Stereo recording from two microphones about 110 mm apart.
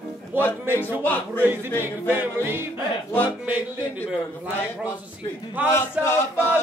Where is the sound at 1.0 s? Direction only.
20° left (ahead or behind).